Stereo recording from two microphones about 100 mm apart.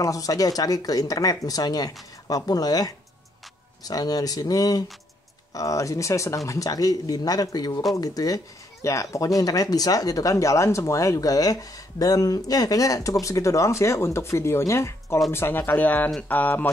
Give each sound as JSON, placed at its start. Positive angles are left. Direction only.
{"t": 0.0, "sound": "speech", "side_deg": 35}